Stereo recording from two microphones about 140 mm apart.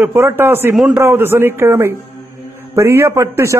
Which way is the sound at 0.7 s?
Centre (ahead or behind).